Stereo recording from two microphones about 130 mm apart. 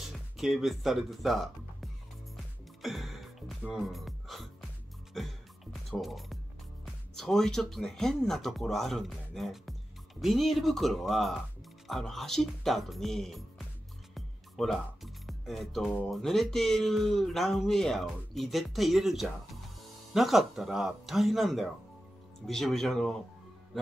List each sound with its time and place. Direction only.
0.4 s speech: centre (ahead or behind)
2.8 s music: centre (ahead or behind)
7.2 s speech: 5° left (ahead or behind)
14.1 s music: centre (ahead or behind)
16.1 s speech: centre (ahead or behind)